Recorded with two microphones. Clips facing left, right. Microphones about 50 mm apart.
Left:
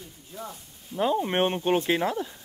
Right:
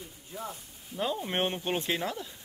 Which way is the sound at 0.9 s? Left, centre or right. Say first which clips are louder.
Left 7 dB; centre.